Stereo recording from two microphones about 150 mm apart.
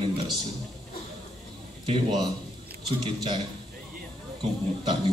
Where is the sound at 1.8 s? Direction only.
30° right (ahead or behind).